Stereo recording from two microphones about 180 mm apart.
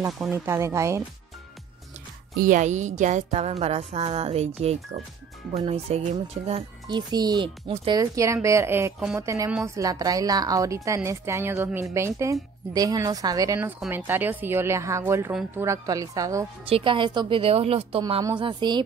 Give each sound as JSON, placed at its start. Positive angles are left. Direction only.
{"t": 0.2, "sound": "speech", "side_deg": -15}
{"t": 2.3, "sound": "music", "side_deg": -45}
{"t": 5.7, "sound": "a woman's voice", "side_deg": -35}
{"t": 8.0, "sound": "a woman's voice", "side_deg": -15}
{"t": 16.6, "sound": "music", "side_deg": -30}
{"t": 18.2, "sound": "a woman's voice", "side_deg": -25}